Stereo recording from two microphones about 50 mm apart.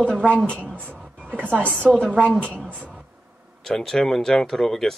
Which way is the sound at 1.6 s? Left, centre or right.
Centre.